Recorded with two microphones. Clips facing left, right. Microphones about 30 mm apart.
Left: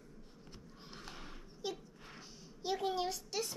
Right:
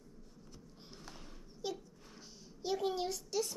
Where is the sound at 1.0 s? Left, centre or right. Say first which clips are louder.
Left 3 dB; left.